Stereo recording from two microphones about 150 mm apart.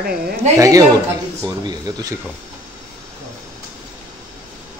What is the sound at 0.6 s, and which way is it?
Speech, 25° right (ahead or behind).